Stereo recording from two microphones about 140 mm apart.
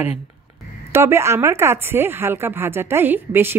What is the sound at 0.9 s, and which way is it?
A woman's voice, 20° right (ahead or behind).